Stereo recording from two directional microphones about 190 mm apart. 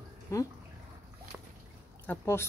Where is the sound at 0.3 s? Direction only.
15° left (ahead or behind).